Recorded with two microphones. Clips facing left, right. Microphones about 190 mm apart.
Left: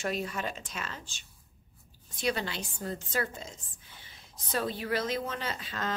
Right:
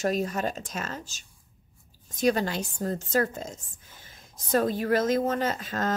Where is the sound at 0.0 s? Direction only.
40° right (ahead or behind).